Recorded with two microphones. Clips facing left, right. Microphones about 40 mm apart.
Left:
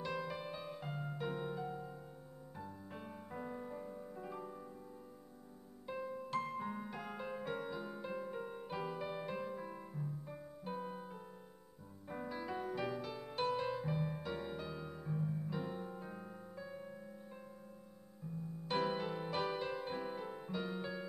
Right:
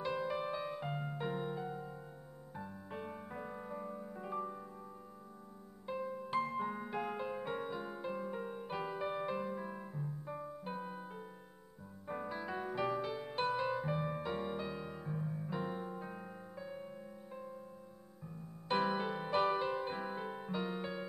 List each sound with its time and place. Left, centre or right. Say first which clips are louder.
0.0 s music: right 5 dB; centre
5.9 s music: right 3 dB; centre
18.7 s music: right 3 dB; centre